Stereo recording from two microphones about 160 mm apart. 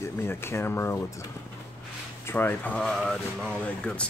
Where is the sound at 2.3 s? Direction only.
10° left (ahead or behind).